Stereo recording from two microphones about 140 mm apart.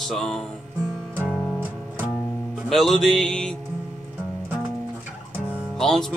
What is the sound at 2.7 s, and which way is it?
Music, centre (ahead or behind).